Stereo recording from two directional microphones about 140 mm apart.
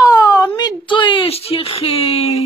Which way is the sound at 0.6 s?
35° left (ahead or behind).